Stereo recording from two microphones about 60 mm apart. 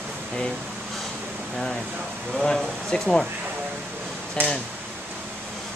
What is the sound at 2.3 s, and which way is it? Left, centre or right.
Speech, centre.